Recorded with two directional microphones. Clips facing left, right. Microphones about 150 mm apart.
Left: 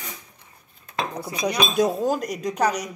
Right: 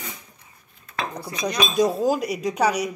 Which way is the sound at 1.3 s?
10° left (ahead or behind).